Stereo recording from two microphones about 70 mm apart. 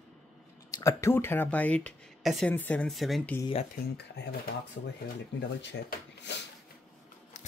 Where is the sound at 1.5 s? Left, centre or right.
Centre.